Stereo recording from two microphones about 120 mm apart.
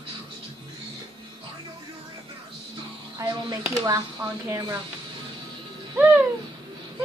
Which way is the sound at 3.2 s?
30° right (ahead or behind).